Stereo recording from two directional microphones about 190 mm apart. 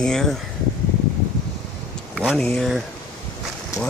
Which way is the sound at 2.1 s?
Centre (ahead or behind).